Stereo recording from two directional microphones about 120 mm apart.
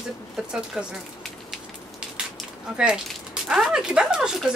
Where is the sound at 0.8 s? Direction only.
10° right (ahead or behind).